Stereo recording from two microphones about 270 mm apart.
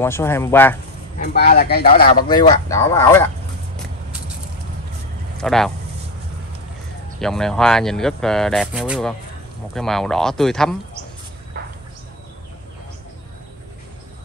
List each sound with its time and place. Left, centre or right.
0.0 s speech: centre
1.2 s speech: left
2.2 s speech: centre
5.4 s speech: centre
7.2 s speech: centre
11.6 s bird: right